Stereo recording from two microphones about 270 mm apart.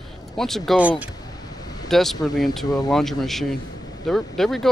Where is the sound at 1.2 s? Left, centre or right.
Centre.